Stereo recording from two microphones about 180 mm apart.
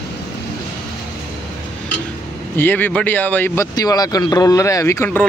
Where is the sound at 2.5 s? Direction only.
10° left (ahead or behind).